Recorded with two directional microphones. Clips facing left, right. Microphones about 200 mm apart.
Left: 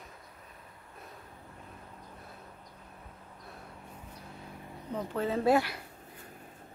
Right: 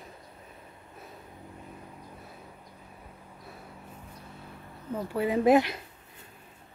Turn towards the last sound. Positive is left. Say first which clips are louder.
# right 5 dB
turn(degrees=-20)  # may be behind; listen again after turning